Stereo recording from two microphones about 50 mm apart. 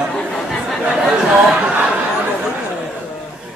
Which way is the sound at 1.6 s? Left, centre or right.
Right.